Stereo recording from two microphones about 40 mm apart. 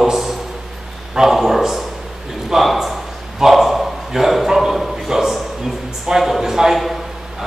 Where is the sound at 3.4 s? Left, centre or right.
Centre.